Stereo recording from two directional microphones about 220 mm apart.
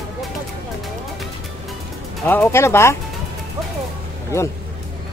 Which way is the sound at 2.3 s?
10° left (ahead or behind).